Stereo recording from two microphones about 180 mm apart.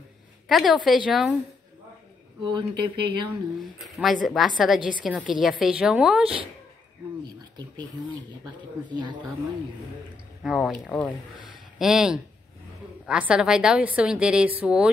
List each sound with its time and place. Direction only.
0.5 s a woman's voice: centre (ahead or behind)
2.4 s speech: 25° right (ahead or behind)
3.8 s a woman's voice: centre (ahead or behind)
8.9 s speech: 25° right (ahead or behind)
10.4 s a woman's voice: centre (ahead or behind)
11.4 s a sound: 5° right (ahead or behind)
13.0 s a woman's voice: 5° right (ahead or behind)